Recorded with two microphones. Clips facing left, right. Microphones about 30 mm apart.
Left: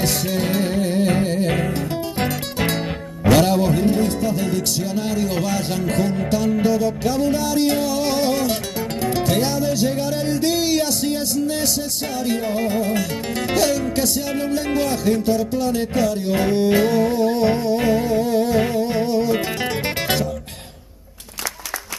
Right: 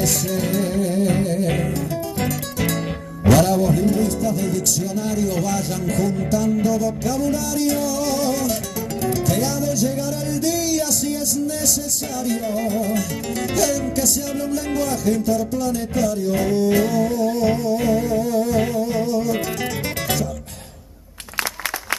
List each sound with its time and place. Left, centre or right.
0.0 s music: left